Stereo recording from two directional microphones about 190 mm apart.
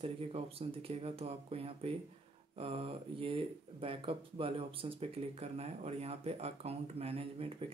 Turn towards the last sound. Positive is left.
turn(degrees=-30)  # may be behind; listen again after turning